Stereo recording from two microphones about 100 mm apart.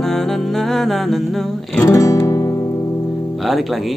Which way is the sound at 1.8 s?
30° left (ahead or behind).